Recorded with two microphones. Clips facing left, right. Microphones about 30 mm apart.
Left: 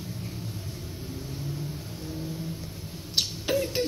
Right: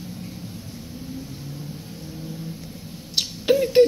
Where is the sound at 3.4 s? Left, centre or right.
Right.